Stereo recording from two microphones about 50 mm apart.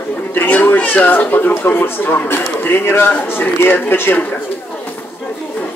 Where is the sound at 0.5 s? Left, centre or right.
Left.